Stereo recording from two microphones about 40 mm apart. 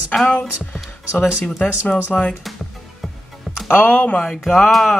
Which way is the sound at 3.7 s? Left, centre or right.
Left.